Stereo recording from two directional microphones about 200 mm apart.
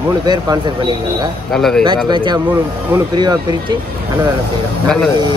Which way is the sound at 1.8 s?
25° right (ahead or behind).